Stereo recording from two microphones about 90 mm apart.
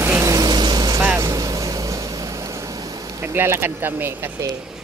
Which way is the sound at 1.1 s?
40° right (ahead or behind).